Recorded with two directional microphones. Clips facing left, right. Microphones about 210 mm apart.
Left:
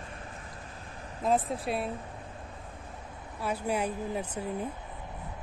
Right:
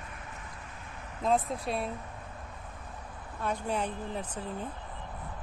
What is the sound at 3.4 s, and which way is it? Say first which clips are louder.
Speech: left 2 dB; 10° left (ahead or behind).